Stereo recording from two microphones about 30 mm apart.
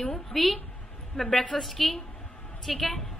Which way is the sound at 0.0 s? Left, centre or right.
Centre.